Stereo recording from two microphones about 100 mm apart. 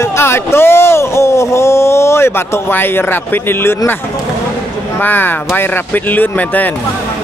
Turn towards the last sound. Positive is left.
turn(degrees=15)  # may be behind; listen again after turning